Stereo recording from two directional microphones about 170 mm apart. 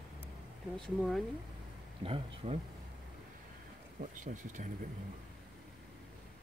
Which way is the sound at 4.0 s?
45° right (ahead or behind).